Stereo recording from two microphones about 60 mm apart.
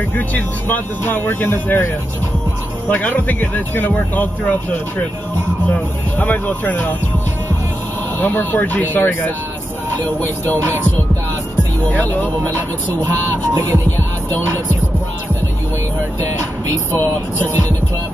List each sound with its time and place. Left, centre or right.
0.1 s speech: left
2.9 s a man's voice: left
8.2 s speech: left
11.8 s a man's voice: left
16.9 s speech: left